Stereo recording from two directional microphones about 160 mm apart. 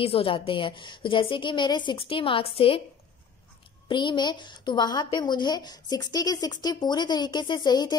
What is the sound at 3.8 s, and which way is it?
A woman's voice, 30° left (ahead or behind).